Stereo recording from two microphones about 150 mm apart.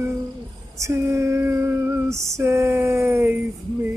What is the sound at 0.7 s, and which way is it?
Female singing, 20° right (ahead or behind).